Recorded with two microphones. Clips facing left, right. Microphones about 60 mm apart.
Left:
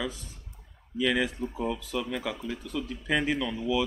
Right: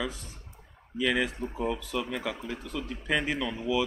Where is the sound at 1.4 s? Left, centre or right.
Right.